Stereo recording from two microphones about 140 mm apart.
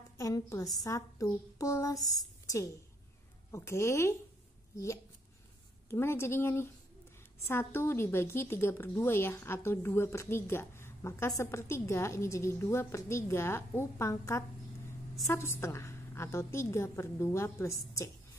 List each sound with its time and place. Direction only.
0.2 s a woman's voice: 25° left (ahead or behind)
5.9 s a woman's voice: 15° left (ahead or behind)